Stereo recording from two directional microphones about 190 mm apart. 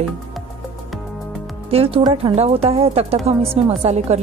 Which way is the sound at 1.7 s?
30° right (ahead or behind).